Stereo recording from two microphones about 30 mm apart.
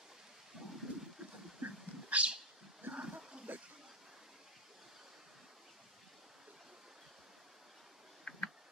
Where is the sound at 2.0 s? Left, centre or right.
Right.